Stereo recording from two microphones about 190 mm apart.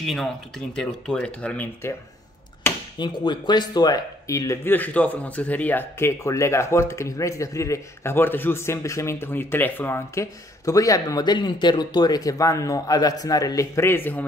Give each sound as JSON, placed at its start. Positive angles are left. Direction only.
{"t": 0.0, "sound": "speech", "side_deg": 0}
{"t": 2.6, "sound": "chop", "side_deg": 10}
{"t": 3.0, "sound": "speech", "side_deg": 25}